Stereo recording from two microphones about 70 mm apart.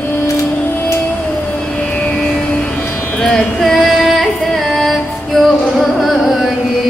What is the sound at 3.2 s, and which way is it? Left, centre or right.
Female singing, centre.